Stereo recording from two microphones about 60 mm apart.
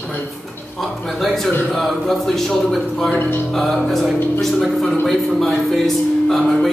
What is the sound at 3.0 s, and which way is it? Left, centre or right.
Speech, left.